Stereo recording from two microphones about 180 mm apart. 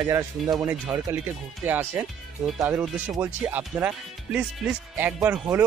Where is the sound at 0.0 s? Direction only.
20° right (ahead or behind).